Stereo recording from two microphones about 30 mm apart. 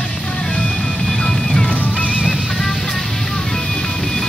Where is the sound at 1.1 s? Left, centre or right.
Left.